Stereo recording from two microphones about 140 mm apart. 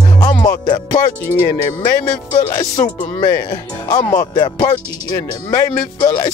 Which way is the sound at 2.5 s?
30° left (ahead or behind).